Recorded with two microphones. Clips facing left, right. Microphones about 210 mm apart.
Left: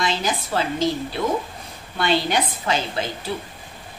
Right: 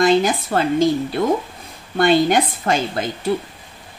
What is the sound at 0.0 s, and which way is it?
A woman's voice, 55° right (ahead or behind).